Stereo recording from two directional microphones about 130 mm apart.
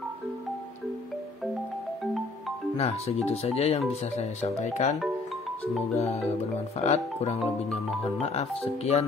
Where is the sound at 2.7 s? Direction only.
50° left (ahead or behind).